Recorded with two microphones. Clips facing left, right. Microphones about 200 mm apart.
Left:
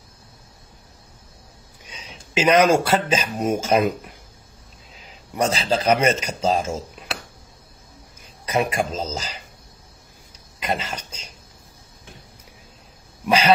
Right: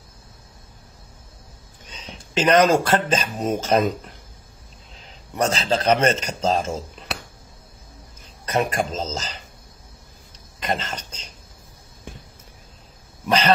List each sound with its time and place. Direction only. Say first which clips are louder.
1.9 s speech: right 2 dB; 10° left (ahead or behind)
8.5 s speech: even; 10° left (ahead or behind)
10.6 s a sound: even; 10° left (ahead or behind)